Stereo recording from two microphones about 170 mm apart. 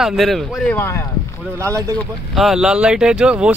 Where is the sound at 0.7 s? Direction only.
15° left (ahead or behind).